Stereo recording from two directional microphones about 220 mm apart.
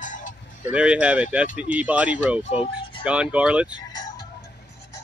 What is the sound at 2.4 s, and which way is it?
Speech, 25° left (ahead or behind).